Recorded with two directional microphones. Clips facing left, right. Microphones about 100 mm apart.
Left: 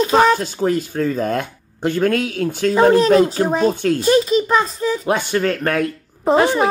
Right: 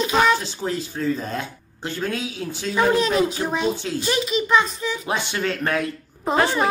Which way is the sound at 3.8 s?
55° left (ahead or behind).